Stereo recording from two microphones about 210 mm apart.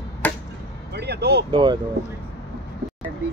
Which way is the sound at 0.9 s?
50° right (ahead or behind).